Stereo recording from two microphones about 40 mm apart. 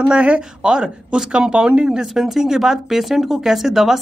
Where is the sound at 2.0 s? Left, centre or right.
Centre.